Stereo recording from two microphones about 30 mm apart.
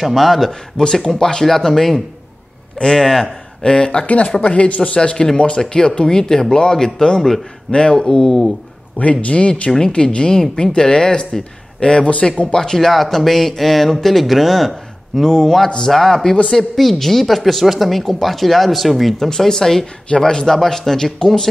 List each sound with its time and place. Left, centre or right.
0.0 s speech: centre
0.5 s speech: centre
3.6 s speech: left
4.0 s speech: left
5.1 s speech: left
7.2 s speech: centre
7.9 s speech: left
9.2 s speech: left
9.7 s speech: centre
9.9 s speech: left
12.1 s speech: left
12.7 s speech: centre
15.2 s speech: centre
19.1 s speech: centre